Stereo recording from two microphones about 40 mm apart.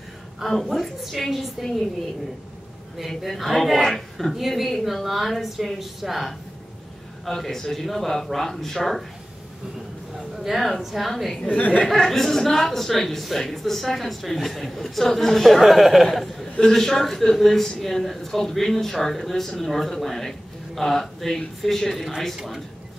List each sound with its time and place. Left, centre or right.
0.4 s a woman's voice: centre
3.1 s a woman's voice: centre
7.2 s a man's voice: centre
10.3 s a woman's voice: centre
11.4 s speech: left
12.0 s a man's voice: centre
15.6 s a woman's voice: centre